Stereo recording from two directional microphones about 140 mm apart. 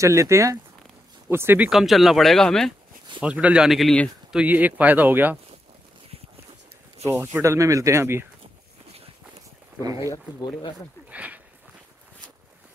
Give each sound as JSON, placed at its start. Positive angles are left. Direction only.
{"t": 0.0, "sound": "speech", "side_deg": -20}
{"t": 1.7, "sound": "speech", "side_deg": 0}
{"t": 3.2, "sound": "speech", "side_deg": -10}
{"t": 4.3, "sound": "speech", "side_deg": -10}
{"t": 7.3, "sound": "speech", "side_deg": -20}
{"t": 9.8, "sound": "speech", "side_deg": -25}
{"t": 11.1, "sound": "a sound", "side_deg": -10}